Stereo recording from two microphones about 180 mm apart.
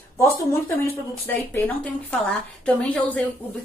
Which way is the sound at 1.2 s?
10° left (ahead or behind).